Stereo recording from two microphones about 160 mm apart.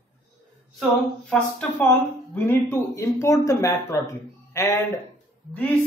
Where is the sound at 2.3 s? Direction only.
15° left (ahead or behind).